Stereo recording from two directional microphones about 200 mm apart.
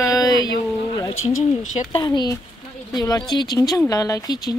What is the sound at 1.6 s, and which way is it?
Speech, 35° left (ahead or behind).